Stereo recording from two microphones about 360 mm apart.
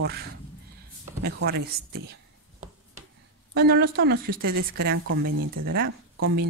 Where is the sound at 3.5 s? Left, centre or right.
Right.